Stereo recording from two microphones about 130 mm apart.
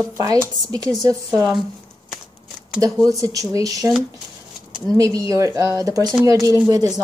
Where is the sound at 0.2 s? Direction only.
30° right (ahead or behind).